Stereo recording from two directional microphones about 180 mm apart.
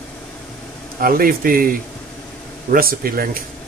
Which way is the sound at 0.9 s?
55° right (ahead or behind).